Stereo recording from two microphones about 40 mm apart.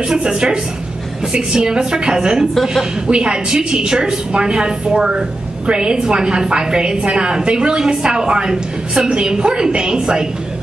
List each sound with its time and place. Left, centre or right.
0.1 s a woman's voice: centre
2.6 s a woman's voice: centre
3.1 s a woman's voice: right